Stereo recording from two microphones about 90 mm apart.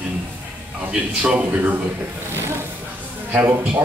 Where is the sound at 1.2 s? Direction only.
15° right (ahead or behind).